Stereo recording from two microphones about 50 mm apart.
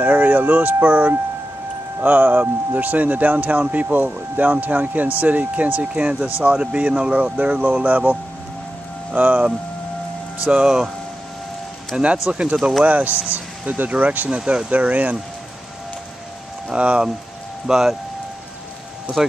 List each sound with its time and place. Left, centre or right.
0.0 s speech: right
10.5 s speech: centre
11.9 s speech: centre
14.4 s speech: centre
14.7 s speech: right
16.7 s speech: right
17.6 s speech: centre